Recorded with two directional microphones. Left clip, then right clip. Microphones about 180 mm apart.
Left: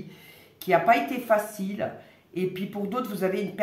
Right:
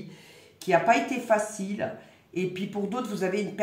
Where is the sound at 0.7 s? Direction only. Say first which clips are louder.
Left 1 dB; 20° left (ahead or behind).